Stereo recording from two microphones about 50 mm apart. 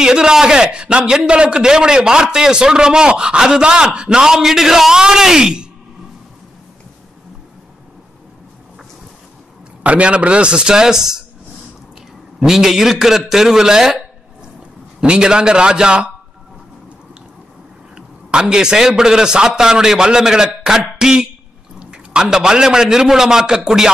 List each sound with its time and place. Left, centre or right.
0.0 s a man's voice: centre
9.8 s a man's voice: right
12.4 s a man's voice: centre
15.0 s a man's voice: centre
17.9 s a man's voice: centre